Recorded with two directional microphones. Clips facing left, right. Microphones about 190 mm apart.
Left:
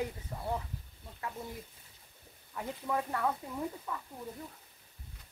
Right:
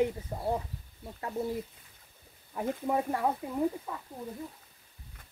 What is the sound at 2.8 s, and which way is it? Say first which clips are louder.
Speech: right 3 dB; 25° right (ahead or behind).